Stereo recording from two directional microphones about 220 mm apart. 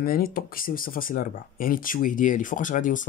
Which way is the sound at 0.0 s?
40° left (ahead or behind).